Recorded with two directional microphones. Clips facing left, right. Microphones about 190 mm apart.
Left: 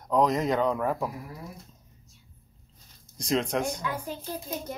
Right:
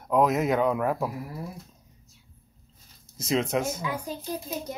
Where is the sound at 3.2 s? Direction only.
5° right (ahead or behind).